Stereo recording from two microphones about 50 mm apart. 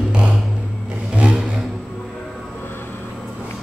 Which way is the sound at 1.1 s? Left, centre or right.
Right.